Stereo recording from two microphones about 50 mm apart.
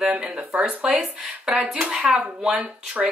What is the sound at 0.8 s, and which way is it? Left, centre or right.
A woman's voice, centre.